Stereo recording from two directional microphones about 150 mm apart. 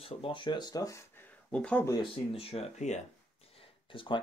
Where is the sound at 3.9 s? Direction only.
35° left (ahead or behind).